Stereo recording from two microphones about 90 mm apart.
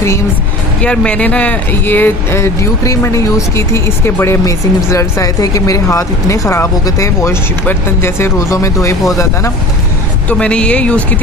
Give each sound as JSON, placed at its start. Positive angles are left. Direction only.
{"t": 0.8, "sound": "speech", "side_deg": 10}
{"t": 10.3, "sound": "speech", "side_deg": 10}